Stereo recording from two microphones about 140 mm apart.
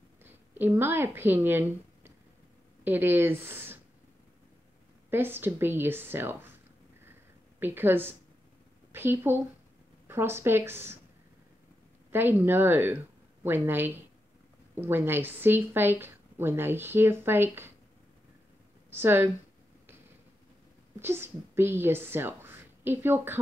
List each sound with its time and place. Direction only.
0.2 s a woman's voice: 15° right (ahead or behind)
5.1 s speech: 15° right (ahead or behind)
7.6 s speech: 15° right (ahead or behind)
12.1 s speech: 15° right (ahead or behind)
18.9 s a woman's voice: 15° right (ahead or behind)
21.0 s a woman's voice: 15° right (ahead or behind)